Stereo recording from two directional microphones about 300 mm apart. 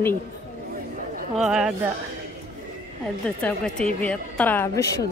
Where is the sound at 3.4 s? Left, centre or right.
Centre.